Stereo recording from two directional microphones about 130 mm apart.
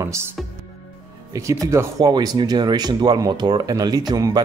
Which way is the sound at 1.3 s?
25° right (ahead or behind).